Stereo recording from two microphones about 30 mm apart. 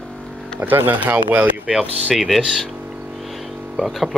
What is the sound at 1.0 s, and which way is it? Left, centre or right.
Speech, right.